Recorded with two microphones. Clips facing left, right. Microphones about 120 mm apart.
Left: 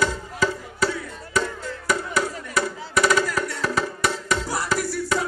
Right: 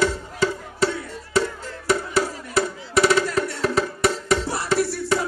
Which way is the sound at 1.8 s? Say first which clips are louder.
Right 3 dB; 30° right (ahead or behind).